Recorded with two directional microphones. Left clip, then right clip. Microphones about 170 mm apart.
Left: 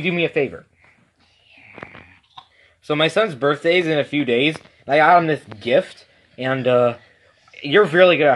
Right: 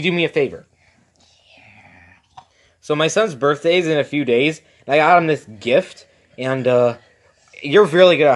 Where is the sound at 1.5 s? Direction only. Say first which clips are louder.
Left 8 dB; 70° right (ahead or behind).